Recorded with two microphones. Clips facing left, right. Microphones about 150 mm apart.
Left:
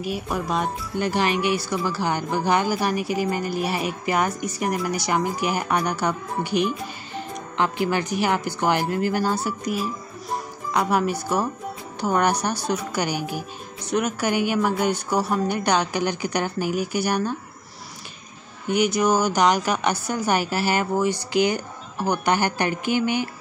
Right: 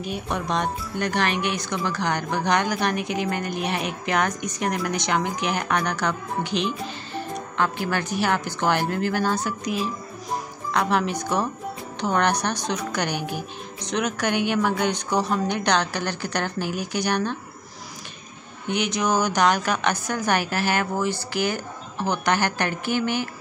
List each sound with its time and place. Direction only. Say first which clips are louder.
0.0 s a woman's voice: left 1 dB; 5° left (ahead or behind)
7.2 s music: even; 15° left (ahead or behind)
7.8 s a woman's voice: left 2 dB; 10° left (ahead or behind)
18.7 s a woman's voice: left 4 dB; 10° left (ahead or behind)